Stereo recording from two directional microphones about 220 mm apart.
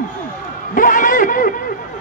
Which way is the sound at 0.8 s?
40° left (ahead or behind).